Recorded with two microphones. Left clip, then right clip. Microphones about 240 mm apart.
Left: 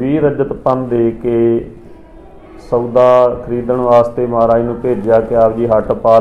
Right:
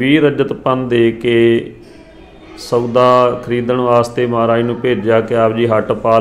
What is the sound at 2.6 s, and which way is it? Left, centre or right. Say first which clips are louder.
Speech: left 1 dB; right.